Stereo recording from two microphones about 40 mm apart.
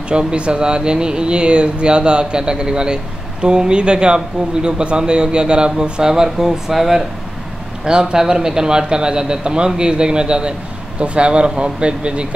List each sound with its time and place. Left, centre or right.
0.1 s speech: right
7.8 s speech: right